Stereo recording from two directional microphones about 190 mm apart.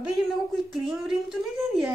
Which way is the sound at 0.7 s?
Centre (ahead or behind).